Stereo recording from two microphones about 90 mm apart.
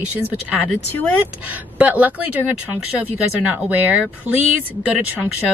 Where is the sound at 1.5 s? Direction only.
15° right (ahead or behind).